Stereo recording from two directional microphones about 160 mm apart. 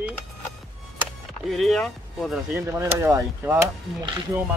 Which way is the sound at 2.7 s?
15° right (ahead or behind).